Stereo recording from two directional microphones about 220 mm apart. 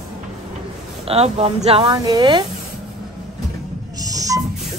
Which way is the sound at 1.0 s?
25° right (ahead or behind).